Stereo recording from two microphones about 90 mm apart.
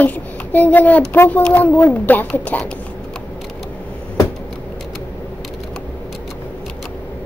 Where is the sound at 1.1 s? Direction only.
20° left (ahead or behind).